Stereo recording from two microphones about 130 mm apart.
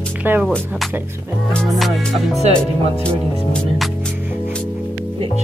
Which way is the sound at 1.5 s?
Centre (ahead or behind).